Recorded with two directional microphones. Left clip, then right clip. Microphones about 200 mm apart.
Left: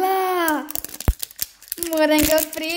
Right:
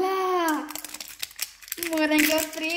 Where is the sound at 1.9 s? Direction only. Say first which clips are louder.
Left 5 dB; 55° left (ahead or behind).